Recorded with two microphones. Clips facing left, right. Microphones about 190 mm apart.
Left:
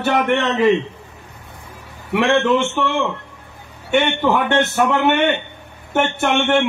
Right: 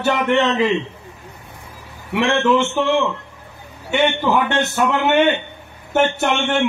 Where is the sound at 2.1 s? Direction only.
60° left (ahead or behind).